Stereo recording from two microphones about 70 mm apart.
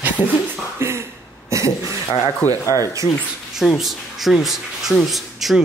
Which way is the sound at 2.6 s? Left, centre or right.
Left.